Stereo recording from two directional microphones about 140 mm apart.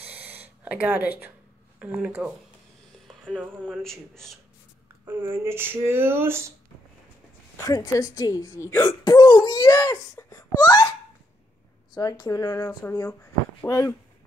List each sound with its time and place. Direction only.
0.0 s gasp: 10° right (ahead or behind)
1.8 s speech: 10° right (ahead or behind)
3.1 s a sound: centre (ahead or behind)
3.8 s speech: 5° left (ahead or behind)
5.0 s speech: 15° right (ahead or behind)
7.5 s speech: 25° left (ahead or behind)